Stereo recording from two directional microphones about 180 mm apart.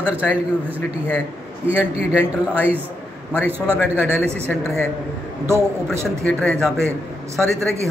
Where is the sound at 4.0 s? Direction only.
10° left (ahead or behind).